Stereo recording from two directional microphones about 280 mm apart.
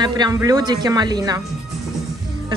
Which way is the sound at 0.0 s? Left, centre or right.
Centre.